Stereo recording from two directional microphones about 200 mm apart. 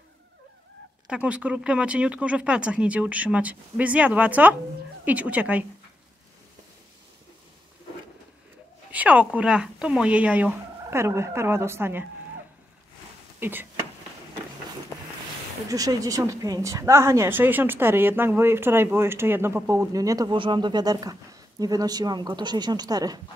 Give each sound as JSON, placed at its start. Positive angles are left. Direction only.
{"t": 1.0, "sound": "a woman's voice", "side_deg": -5}
{"t": 8.9, "sound": "a woman's voice", "side_deg": -5}
{"t": 13.4, "sound": "speech", "side_deg": -10}
{"t": 15.7, "sound": "a woman's voice", "side_deg": -15}